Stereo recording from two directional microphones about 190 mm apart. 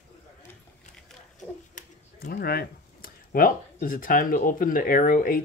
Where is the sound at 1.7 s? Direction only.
50° left (ahead or behind).